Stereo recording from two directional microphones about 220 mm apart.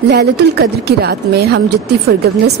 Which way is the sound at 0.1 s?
50° right (ahead or behind).